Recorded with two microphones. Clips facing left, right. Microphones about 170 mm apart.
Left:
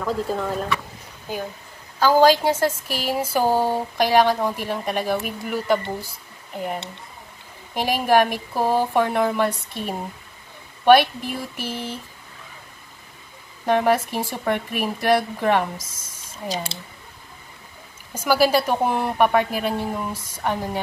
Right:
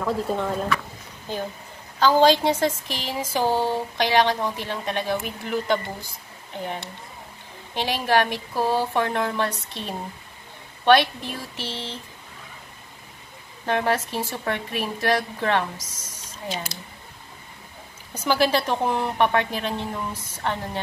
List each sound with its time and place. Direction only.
0.0 s speech: centre (ahead or behind)
1.3 s speech: 10° left (ahead or behind)
13.7 s speech: 10° left (ahead or behind)
16.4 s speech: 35° left (ahead or behind)
18.1 s speech: 10° left (ahead or behind)